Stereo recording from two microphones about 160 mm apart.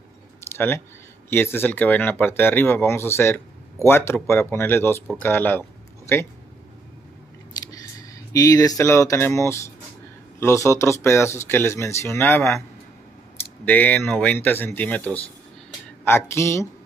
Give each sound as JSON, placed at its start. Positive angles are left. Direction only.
{"t": 0.4, "sound": "a sound", "side_deg": 15}
{"t": 1.3, "sound": "speech", "side_deg": 15}
{"t": 7.7, "sound": "speech", "side_deg": 20}
{"t": 13.7, "sound": "speech", "side_deg": 10}